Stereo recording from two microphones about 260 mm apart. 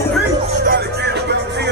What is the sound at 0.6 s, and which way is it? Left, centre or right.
Music, right.